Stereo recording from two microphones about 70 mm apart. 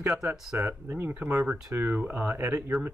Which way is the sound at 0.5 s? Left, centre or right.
Right.